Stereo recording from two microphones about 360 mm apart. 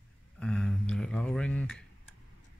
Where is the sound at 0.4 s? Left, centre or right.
Centre.